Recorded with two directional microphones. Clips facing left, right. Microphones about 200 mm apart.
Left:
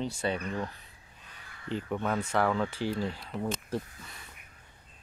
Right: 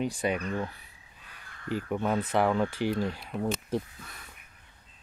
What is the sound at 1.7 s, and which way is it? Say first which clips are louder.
Speech: right 2 dB; 10° right (ahead or behind).